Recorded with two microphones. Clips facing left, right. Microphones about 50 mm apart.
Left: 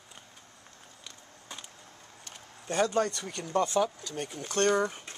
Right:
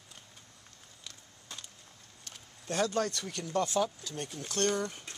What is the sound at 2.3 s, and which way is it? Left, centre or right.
Speech, centre.